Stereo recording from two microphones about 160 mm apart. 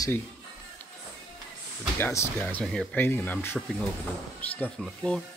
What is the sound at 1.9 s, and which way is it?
Speech, 15° left (ahead or behind).